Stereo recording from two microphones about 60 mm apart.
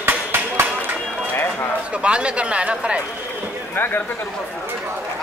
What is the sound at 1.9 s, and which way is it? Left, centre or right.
A man's voice, centre.